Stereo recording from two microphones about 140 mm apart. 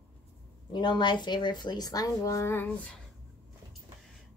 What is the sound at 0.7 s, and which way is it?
Speech, 35° left (ahead or behind).